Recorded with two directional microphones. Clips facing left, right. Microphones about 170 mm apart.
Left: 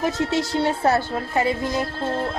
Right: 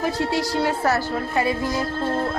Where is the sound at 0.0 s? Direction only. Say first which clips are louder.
Left 1 dB; 20° left (ahead or behind).